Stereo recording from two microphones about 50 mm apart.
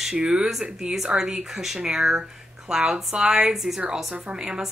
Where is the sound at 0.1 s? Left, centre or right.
Centre.